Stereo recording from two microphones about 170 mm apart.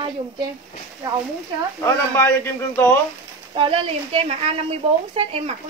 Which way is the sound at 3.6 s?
35° right (ahead or behind).